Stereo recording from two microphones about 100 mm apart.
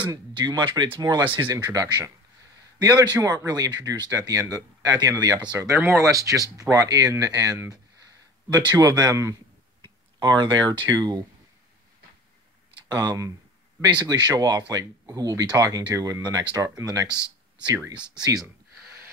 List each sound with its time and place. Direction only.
0.4 s speech: 45° right (ahead or behind)
1.5 s speech: 35° right (ahead or behind)
12.8 s speech: 40° right (ahead or behind)